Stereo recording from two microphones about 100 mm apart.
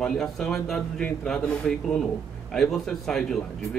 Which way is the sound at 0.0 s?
5° left (ahead or behind).